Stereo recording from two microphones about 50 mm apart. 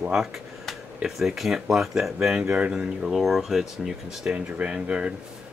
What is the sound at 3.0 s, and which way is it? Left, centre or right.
Speech, centre.